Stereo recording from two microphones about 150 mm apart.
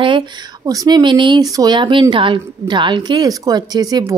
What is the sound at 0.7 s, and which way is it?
Speech, 25° right (ahead or behind).